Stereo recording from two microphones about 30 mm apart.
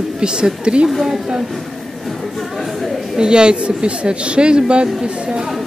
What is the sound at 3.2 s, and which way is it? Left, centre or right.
A woman's voice, right.